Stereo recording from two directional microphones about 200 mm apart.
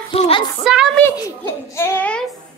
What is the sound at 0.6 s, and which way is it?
Speech, centre (ahead or behind).